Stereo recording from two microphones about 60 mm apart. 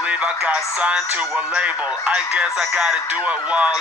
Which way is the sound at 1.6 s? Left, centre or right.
Right.